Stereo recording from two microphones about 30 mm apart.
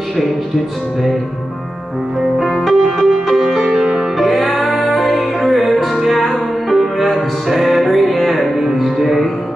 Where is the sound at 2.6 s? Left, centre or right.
Centre.